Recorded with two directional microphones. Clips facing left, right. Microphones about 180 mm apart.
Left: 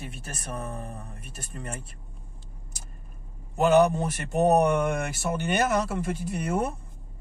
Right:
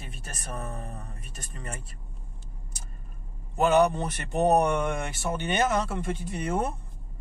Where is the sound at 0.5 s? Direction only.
10° left (ahead or behind).